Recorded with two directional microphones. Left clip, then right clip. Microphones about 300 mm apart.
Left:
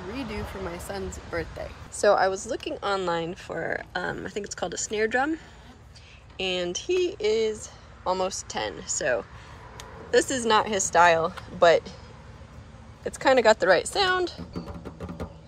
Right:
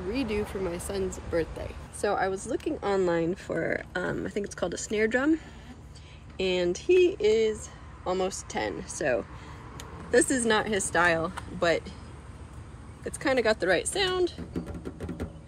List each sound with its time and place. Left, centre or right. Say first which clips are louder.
0.1 s speech: right 5 dB; centre
2.0 s speech: left 7 dB; centre
10.1 s speech: left 2 dB; centre
13.0 s speech: left 6 dB; centre
13.7 s speech: left 3 dB; left